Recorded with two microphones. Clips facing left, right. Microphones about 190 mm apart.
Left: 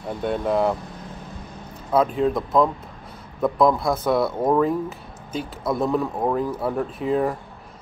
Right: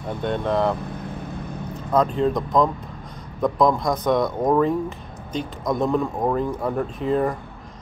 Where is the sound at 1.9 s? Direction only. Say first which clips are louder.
Even; 5° left (ahead or behind).